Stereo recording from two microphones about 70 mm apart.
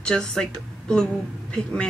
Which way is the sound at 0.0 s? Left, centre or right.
Centre.